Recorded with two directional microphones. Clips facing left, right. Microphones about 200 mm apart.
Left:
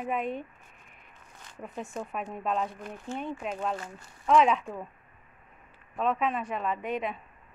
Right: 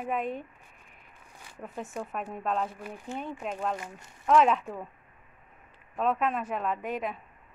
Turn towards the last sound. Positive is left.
turn(degrees=0)  # may be behind; listen again after turning